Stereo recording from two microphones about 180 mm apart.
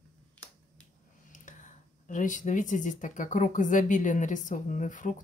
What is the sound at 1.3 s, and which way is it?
Speech, 45° left (ahead or behind).